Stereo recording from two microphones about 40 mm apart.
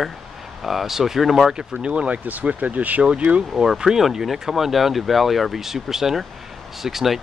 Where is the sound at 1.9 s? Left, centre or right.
Right.